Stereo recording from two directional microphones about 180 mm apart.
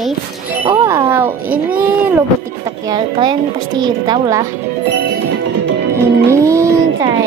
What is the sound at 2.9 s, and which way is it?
A woman's voice, 25° right (ahead or behind).